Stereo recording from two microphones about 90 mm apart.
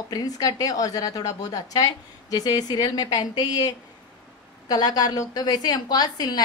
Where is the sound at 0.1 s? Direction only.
45° left (ahead or behind).